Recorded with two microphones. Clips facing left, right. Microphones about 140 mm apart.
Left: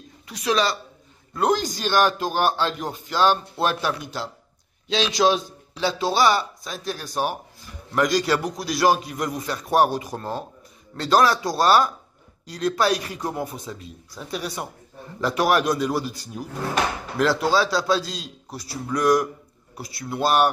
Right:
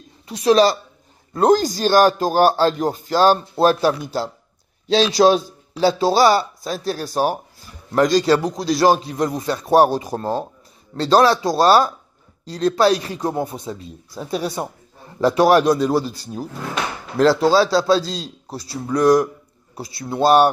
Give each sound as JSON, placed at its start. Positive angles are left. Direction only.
{"t": 0.3, "sound": "a man's voice", "side_deg": -35}